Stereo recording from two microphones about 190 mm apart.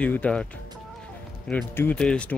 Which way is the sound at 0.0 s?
5° left (ahead or behind).